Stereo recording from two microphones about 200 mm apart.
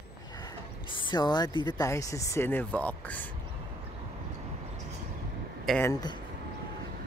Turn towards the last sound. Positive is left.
turn(degrees=20)  # may be behind; listen again after turning